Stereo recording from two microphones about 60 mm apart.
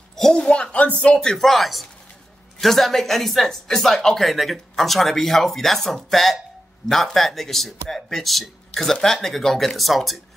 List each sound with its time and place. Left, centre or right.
0.1 s a woman's voice: centre
1.3 s speech: centre